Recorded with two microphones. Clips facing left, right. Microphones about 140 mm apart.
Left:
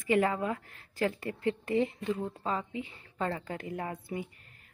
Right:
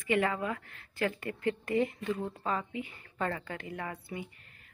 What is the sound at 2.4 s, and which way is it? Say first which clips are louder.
Speech: even; 25° left (ahead or behind).